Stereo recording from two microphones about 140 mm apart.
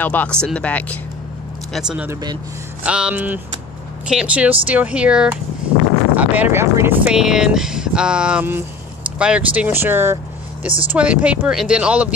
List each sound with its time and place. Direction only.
0.0 s speech: 10° left (ahead or behind)
1.7 s speech: 5° right (ahead or behind)